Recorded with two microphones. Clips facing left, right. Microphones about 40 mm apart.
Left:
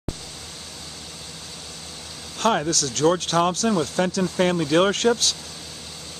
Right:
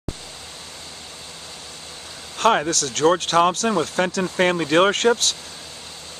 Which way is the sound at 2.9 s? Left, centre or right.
Centre.